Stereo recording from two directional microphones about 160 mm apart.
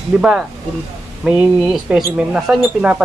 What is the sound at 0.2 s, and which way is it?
Speech, 5° right (ahead or behind).